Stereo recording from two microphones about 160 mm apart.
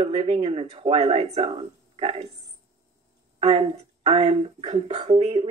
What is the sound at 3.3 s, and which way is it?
Speech, 40° right (ahead or behind).